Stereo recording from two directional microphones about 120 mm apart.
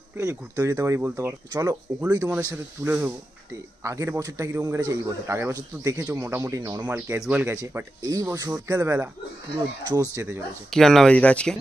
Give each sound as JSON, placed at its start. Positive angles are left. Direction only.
{"t": 0.2, "sound": "a man's voice", "side_deg": -25}
{"t": 1.5, "sound": "a man's voice", "side_deg": -30}
{"t": 2.3, "sound": "a man's voice", "side_deg": -15}
{"t": 6.9, "sound": "speech", "side_deg": -15}
{"t": 8.0, "sound": "a man's voice", "side_deg": -30}
{"t": 10.7, "sound": "speech", "side_deg": 5}